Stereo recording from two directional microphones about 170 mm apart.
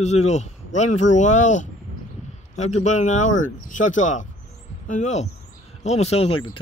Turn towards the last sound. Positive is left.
turn(degrees=35)  # may be behind; listen again after turning